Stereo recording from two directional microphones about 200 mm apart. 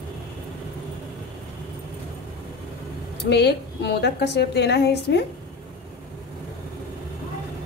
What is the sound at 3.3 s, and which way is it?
A woman's voice, 60° left (ahead or behind).